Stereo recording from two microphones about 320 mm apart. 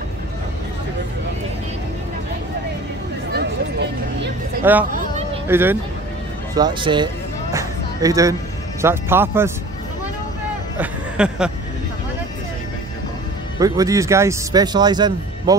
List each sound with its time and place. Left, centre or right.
3.3 s music: right
4.6 s speech: centre
7.5 s music: centre
8.8 s speech: centre
10.8 s a sound: centre
13.6 s speech: centre